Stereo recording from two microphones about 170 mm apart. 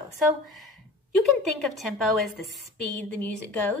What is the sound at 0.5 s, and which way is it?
A woman's voice, centre (ahead or behind).